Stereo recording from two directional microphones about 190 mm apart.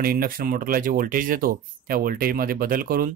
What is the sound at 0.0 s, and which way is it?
Speech, 50° right (ahead or behind).